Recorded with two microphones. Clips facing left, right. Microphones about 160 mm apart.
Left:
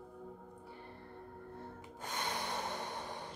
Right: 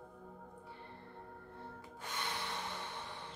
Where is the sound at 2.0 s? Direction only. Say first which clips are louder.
Left 3 dB; 40° left (ahead or behind).